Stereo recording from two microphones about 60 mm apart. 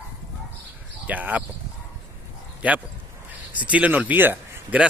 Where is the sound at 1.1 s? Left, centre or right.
Right.